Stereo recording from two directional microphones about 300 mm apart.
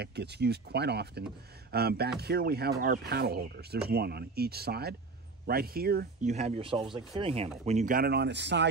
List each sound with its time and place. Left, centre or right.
0.0 s speech: right